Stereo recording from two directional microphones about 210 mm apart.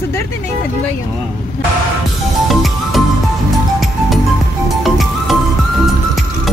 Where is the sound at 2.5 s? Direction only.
Centre (ahead or behind).